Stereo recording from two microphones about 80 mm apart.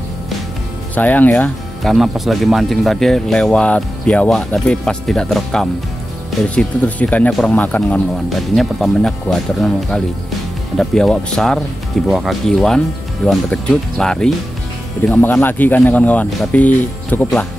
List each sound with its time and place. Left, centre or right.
0.9 s speech: left
1.8 s speech: centre
6.5 s speech: centre
7.2 s speech: centre
7.5 s speech: centre
8.3 s speech: centre
15.0 s speech: left